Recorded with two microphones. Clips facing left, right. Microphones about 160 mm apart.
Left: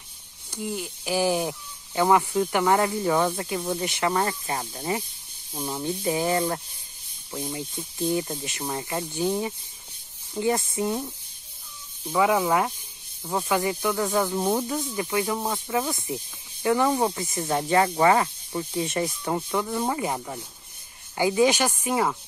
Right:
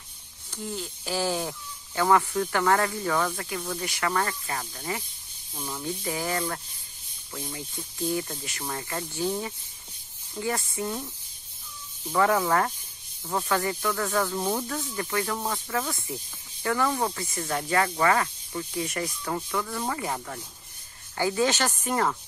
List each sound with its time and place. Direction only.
0.5 s speech: 15° left (ahead or behind)
12.1 s speech: 10° left (ahead or behind)